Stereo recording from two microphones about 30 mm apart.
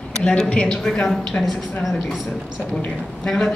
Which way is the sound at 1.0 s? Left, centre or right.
Centre.